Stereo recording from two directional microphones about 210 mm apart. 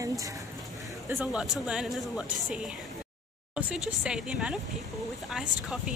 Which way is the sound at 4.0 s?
5° right (ahead or behind).